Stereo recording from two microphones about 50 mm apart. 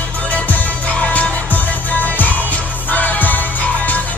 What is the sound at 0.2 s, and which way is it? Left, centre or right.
Music, left.